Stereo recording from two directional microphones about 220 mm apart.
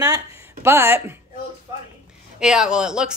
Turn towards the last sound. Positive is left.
turn(degrees=-5)  # may be behind; listen again after turning